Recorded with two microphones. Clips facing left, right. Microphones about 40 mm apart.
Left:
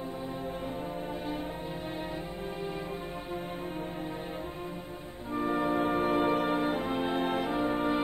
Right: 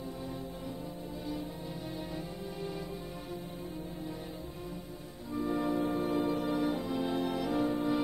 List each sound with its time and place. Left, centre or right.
5.3 s music: left